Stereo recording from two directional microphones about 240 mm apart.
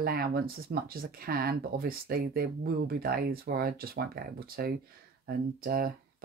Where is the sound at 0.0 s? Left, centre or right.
Right.